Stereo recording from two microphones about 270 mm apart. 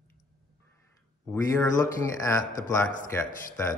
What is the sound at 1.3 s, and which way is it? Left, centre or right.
Speech, centre.